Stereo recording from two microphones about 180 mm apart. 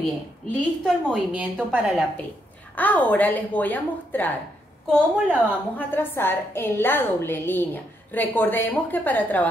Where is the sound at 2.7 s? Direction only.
10° left (ahead or behind).